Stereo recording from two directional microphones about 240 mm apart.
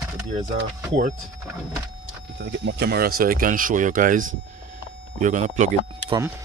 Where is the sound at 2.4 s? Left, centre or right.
Right.